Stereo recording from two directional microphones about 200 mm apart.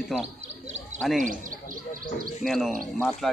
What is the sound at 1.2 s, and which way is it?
Bird, 40° right (ahead or behind).